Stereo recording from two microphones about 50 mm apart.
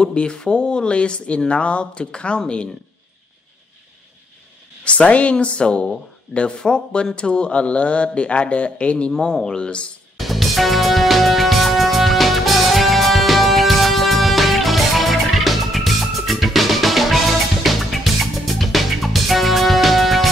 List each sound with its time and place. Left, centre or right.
0.0 s speech: centre
4.8 s speech: left
9.1 s speech: centre
10.1 s music: centre